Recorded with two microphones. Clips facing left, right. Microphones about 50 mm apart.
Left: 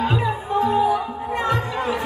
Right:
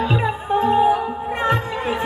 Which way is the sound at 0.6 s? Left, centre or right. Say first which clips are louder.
Right 3 dB; right.